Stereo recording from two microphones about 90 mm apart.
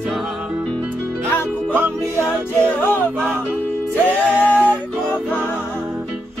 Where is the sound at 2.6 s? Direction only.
20° left (ahead or behind).